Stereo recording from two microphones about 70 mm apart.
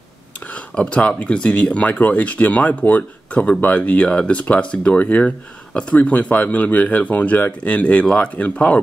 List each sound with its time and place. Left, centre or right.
0.7 s speech: centre